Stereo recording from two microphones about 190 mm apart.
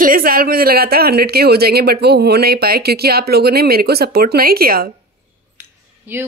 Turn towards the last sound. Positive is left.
turn(degrees=-10)  # may be behind; listen again after turning